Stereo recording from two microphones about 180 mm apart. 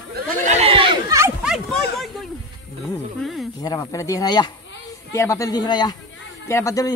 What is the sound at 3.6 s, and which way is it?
Speech, 20° left (ahead or behind).